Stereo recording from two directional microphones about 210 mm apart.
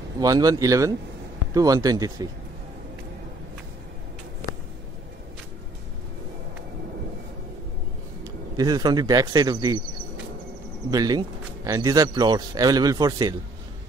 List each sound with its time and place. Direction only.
0.2 s a man's voice: 15° right (ahead or behind)
8.2 s speech: 20° right (ahead or behind)
10.9 s a man's voice: 20° right (ahead or behind)